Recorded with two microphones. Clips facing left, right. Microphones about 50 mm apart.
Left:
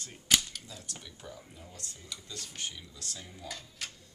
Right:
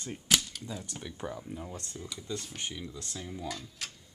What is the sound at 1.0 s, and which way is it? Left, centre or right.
Speech, right.